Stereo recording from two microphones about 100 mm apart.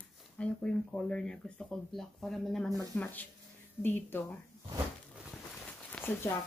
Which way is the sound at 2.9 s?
20° left (ahead or behind).